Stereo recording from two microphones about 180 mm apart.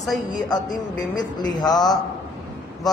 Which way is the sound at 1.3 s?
20° left (ahead or behind).